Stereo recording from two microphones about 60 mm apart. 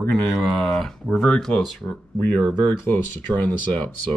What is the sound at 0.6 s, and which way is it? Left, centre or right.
Speech, centre.